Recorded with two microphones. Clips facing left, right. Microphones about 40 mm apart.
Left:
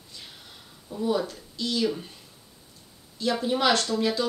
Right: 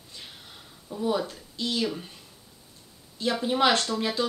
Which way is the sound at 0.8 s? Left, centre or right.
Centre.